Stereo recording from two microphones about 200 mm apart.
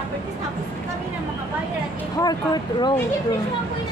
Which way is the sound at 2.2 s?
20° left (ahead or behind).